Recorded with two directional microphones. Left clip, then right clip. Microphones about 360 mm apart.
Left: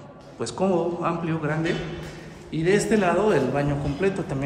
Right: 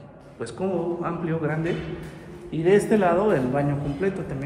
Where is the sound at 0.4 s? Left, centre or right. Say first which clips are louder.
Left 4 dB; centre.